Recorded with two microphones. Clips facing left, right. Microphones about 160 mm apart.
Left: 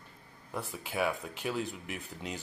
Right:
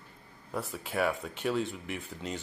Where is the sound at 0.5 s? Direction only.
Centre (ahead or behind).